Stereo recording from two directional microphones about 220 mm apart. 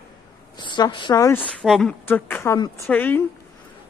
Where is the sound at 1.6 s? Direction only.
Centre (ahead or behind).